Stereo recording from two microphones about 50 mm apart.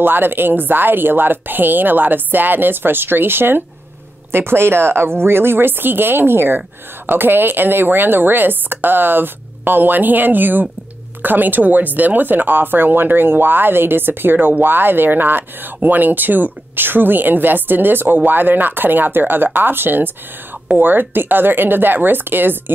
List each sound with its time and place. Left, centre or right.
0.0 s a woman's voice: right